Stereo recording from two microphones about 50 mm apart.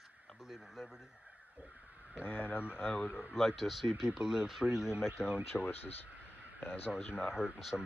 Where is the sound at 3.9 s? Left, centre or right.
Centre.